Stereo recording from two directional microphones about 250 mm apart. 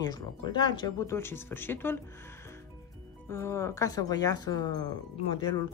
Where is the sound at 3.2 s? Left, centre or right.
Centre.